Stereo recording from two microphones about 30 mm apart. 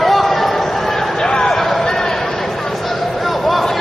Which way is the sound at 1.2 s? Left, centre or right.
Left.